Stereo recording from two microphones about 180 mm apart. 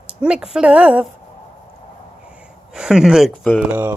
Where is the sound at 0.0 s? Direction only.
5° right (ahead or behind).